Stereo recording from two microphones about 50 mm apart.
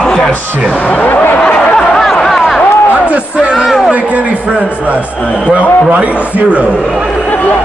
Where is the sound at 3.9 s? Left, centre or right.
Right.